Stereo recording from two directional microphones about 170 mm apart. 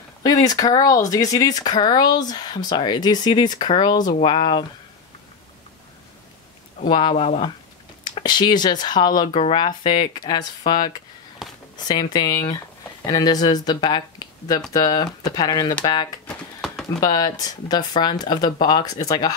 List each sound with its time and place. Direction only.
0.2 s speech: 20° left (ahead or behind)
6.9 s speech: 30° left (ahead or behind)
16.3 s bird: 5° left (ahead or behind)
17.0 s speech: 20° left (ahead or behind)